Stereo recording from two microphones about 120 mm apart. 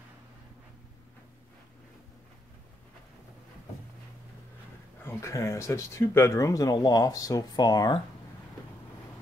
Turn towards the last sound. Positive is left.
turn(degrees=40)  # may be behind; listen again after turning